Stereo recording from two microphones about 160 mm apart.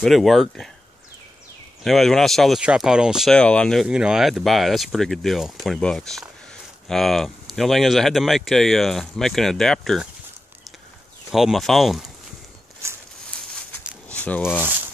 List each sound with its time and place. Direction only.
0.0 s speech: centre (ahead or behind)
1.9 s speech: centre (ahead or behind)
3.8 s speech: 5° right (ahead or behind)
11.2 s speech: centre (ahead or behind)
12.8 s a sound: 15° right (ahead or behind)
14.0 s a sound: 10° left (ahead or behind)